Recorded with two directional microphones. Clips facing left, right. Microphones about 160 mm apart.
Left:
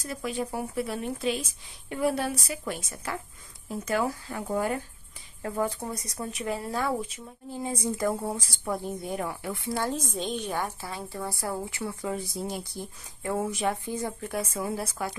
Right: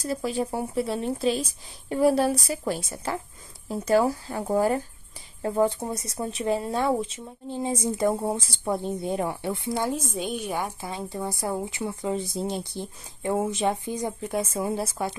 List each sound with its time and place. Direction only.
0.0 s speech: 35° right (ahead or behind)